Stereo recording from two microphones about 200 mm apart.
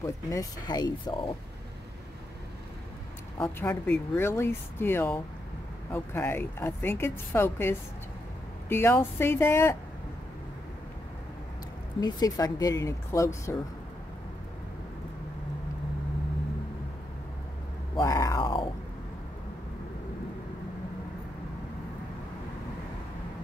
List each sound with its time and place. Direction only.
0.0 s speech: 15° left (ahead or behind)
3.4 s speech: 10° left (ahead or behind)
12.0 s speech: 20° left (ahead or behind)
17.9 s a sound: 20° left (ahead or behind)